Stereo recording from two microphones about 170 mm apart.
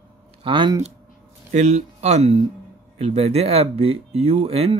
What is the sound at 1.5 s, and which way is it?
Speech, 45° right (ahead or behind).